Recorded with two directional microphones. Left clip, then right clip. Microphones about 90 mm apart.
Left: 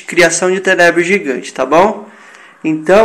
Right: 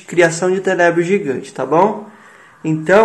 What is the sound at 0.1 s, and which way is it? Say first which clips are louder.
A man's voice: left 3 dB; 10° right (ahead or behind).